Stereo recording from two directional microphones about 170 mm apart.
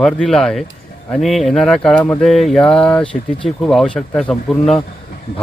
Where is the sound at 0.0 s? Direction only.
5° left (ahead or behind).